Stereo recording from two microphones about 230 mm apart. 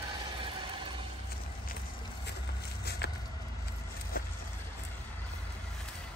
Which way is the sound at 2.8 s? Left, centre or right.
Left.